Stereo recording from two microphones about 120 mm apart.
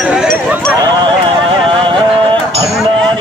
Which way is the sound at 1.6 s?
45° right (ahead or behind).